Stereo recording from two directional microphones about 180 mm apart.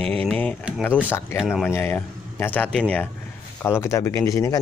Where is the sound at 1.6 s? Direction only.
10° left (ahead or behind).